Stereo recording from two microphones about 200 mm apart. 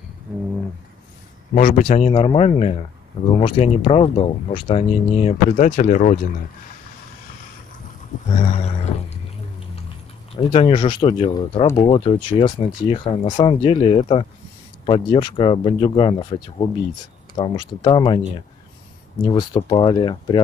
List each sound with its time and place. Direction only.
1.5 s speech: 40° left (ahead or behind)
8.4 s a sound: 35° left (ahead or behind)
10.3 s speech: 25° left (ahead or behind)
19.2 s speech: 20° left (ahead or behind)